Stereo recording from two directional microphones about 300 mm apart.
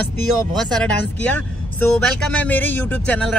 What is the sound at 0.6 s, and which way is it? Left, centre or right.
Speech, centre.